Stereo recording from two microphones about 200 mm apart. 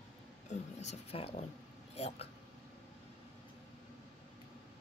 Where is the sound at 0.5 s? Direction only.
35° left (ahead or behind).